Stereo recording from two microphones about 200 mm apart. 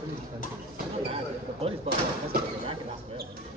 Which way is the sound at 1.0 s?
30° right (ahead or behind).